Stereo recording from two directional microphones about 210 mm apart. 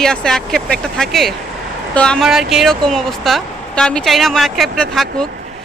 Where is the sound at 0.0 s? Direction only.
5° left (ahead or behind).